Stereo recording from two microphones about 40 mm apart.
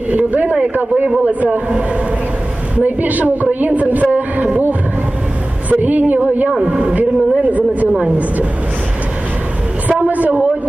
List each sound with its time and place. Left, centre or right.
0.1 s speech: right
2.8 s a woman's voice: right
5.7 s a woman's voice: right
6.6 s speech: right
10.0 s a woman's voice: right